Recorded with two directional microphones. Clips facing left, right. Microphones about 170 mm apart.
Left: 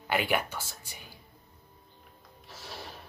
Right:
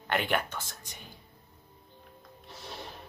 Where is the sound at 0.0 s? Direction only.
5° left (ahead or behind).